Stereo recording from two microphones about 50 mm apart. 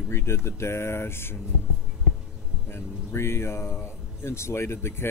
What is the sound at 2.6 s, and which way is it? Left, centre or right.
Speech, left.